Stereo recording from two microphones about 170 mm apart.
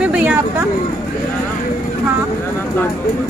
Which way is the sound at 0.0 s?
5° right (ahead or behind).